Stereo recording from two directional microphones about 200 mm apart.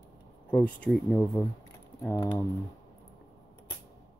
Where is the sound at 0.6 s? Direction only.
5° left (ahead or behind).